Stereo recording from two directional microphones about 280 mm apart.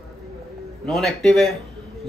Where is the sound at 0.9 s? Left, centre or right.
Centre.